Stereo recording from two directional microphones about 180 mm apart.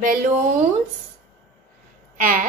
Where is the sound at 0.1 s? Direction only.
50° right (ahead or behind).